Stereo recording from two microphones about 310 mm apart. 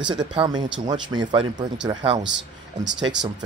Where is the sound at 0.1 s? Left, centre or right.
Centre.